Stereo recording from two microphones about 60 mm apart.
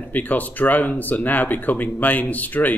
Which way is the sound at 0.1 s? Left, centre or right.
Left.